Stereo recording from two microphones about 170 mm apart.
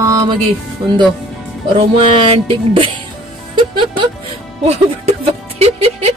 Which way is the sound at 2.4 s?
30° right (ahead or behind).